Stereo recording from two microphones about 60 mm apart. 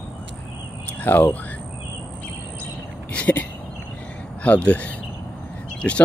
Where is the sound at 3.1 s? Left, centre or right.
Left.